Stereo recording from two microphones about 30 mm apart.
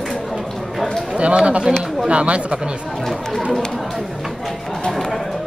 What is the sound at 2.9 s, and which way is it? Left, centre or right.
Speech, centre.